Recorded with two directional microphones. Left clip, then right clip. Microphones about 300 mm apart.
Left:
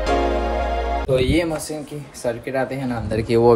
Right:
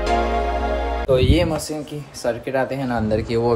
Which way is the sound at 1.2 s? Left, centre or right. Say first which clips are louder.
Right 1 dB; centre.